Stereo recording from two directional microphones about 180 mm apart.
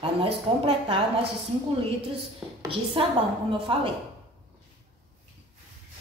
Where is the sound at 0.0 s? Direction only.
30° right (ahead or behind).